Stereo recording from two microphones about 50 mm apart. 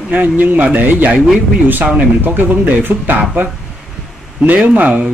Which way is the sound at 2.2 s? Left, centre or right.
Right.